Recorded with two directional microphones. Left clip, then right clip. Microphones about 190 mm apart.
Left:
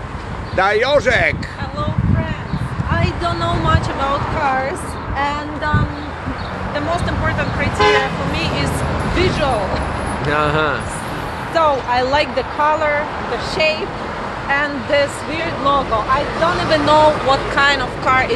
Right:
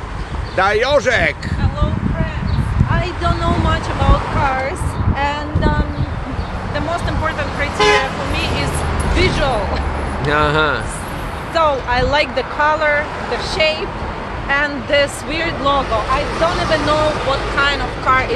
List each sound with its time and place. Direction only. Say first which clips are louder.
0.6 s speech: even; 10° right (ahead or behind)
4.6 s speech: right 1 dB; 15° left (ahead or behind)
6.7 s speech: left 1 dB; 10° left (ahead or behind)
7.7 s speech: right 1 dB; 50° right (ahead or behind)
9.1 s speech: right 1 dB; 5° left (ahead or behind)
10.2 s speech: right 2 dB; 15° right (ahead or behind)
11.5 s speech: even; 10° left (ahead or behind)
15.3 s speech: even; 15° right (ahead or behind)
16.7 s speech: left 4 dB; 40° left (ahead or behind)